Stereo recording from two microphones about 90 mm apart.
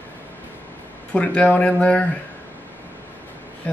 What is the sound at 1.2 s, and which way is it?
Speech, 15° left (ahead or behind).